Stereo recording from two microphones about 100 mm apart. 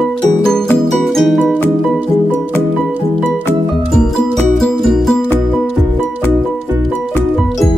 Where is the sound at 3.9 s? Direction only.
5° left (ahead or behind).